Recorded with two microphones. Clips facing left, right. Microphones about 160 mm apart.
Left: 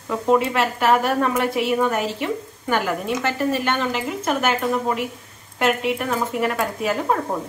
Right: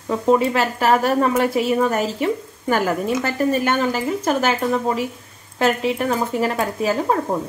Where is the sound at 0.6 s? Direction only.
35° right (ahead or behind).